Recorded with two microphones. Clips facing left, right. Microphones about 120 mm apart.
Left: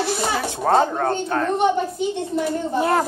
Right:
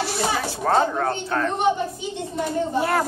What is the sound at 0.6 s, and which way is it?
Speech, 30° left (ahead or behind).